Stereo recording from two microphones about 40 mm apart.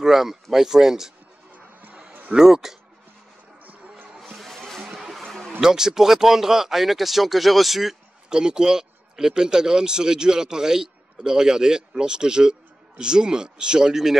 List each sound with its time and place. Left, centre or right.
0.0 s speech: centre
2.3 s speech: centre
4.2 s music: centre
4.9 s music: centre
5.2 s a sound: centre
5.6 s speech: centre
8.3 s speech: centre